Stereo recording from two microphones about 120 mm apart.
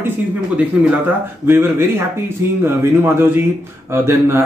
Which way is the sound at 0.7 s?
10° right (ahead or behind).